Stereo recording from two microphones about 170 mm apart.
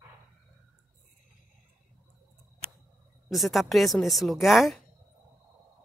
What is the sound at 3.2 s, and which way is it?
Speech, centre (ahead or behind).